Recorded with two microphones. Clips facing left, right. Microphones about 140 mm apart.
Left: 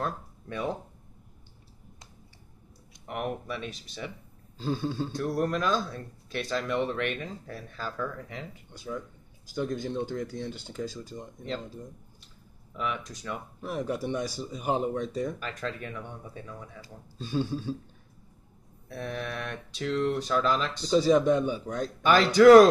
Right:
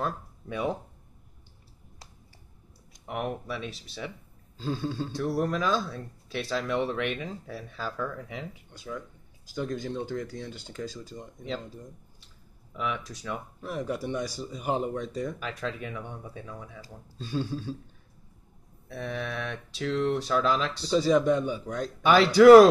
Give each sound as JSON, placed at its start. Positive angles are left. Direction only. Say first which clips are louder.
{"t": 0.0, "sound": "speech", "louder": "right 1 dB", "side_deg": -5}
{"t": 3.1, "sound": "speech", "louder": "even", "side_deg": 0}
{"t": 12.7, "sound": "speech", "louder": "right 1 dB", "side_deg": 0}
{"t": 14.0, "sound": "speech", "louder": "left 1 dB", "side_deg": 20}
{"t": 14.9, "sound": "speech", "louder": "left 2 dB", "side_deg": 0}
{"t": 18.9, "sound": "speech", "louder": "right 1 dB", "side_deg": 0}